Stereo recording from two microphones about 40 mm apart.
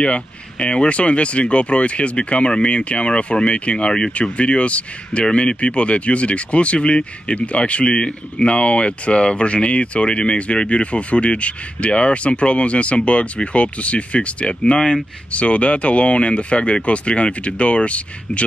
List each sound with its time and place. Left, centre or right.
0.0 s speech: left